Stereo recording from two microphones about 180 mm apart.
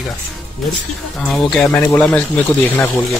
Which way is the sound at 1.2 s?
Centre (ahead or behind).